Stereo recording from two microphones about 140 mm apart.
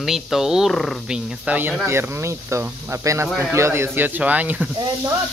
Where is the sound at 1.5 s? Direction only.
10° right (ahead or behind).